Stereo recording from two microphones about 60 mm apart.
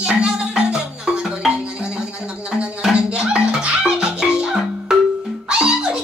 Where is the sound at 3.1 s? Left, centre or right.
Centre.